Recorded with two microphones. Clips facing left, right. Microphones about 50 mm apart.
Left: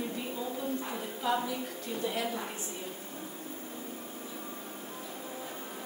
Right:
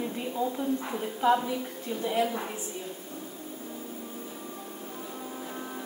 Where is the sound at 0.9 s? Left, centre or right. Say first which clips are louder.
Right 8 dB; centre.